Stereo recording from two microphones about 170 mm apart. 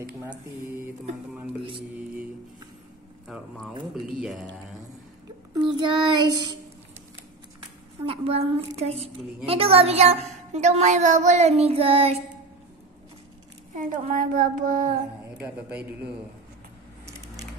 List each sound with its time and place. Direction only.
3.3 s speech: centre (ahead or behind)
5.5 s child singing: 25° right (ahead or behind)
8.0 s a woman's voice: 35° right (ahead or behind)
13.7 s child singing: 50° right (ahead or behind)
15.3 s a man's voice: 10° right (ahead or behind)